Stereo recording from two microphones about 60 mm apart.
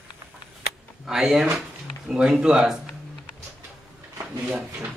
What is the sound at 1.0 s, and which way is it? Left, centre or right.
Speech, centre.